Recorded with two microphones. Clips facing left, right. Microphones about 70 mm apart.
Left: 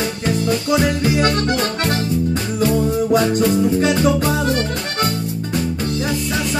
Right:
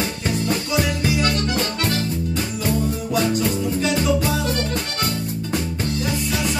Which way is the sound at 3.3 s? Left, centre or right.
Left.